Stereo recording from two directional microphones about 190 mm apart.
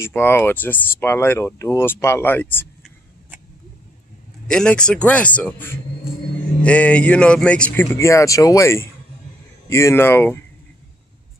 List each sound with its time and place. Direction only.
0.0 s speech: 10° left (ahead or behind)
4.5 s speech: 5° left (ahead or behind)